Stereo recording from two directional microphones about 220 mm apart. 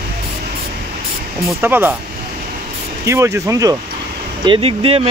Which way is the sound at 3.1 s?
15° right (ahead or behind).